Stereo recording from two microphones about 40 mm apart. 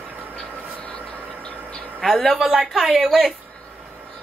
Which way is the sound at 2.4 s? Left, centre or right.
Centre.